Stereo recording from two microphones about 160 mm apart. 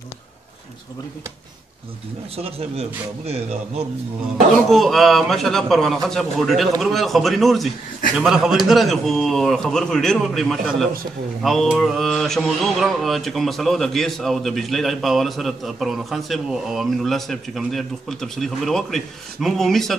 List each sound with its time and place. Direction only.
2.3 s a man's voice: 40° right (ahead or behind)
4.6 s mantra: centre (ahead or behind)